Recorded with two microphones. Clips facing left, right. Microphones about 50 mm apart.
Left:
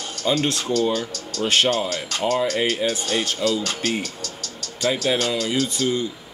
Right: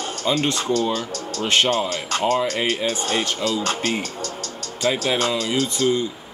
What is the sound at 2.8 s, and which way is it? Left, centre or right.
Speech, right.